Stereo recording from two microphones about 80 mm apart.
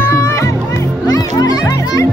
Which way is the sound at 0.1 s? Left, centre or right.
Left.